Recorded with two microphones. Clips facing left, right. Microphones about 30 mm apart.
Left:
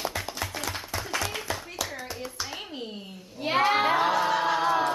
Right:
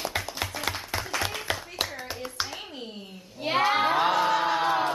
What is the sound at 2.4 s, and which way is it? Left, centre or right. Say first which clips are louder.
Hands: left 1 dB; centre.